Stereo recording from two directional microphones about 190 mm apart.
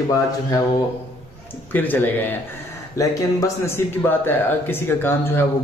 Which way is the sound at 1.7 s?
10° left (ahead or behind).